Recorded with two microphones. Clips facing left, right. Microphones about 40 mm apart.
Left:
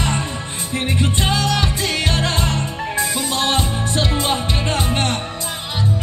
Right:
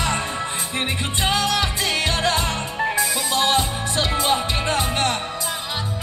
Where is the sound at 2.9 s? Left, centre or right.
Left.